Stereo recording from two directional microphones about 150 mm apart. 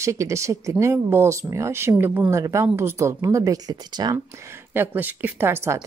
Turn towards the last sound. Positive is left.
turn(degrees=-15)  # may be behind; listen again after turning